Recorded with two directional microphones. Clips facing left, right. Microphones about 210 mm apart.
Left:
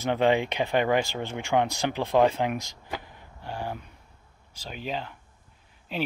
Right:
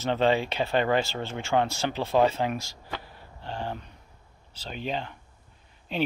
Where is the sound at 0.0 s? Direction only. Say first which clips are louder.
Left 1 dB; 15° left (ahead or behind).